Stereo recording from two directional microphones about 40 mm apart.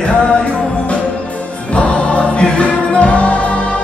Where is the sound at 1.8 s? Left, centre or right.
Left.